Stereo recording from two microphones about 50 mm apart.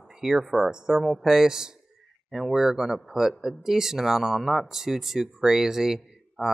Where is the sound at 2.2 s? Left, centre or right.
Centre.